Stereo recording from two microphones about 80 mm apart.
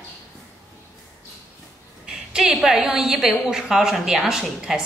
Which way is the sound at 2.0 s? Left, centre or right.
Centre.